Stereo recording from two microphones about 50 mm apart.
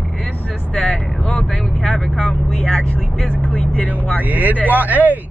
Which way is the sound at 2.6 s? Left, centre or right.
Left.